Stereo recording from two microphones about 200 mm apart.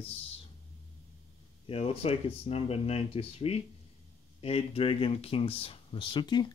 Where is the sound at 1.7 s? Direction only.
30° left (ahead or behind).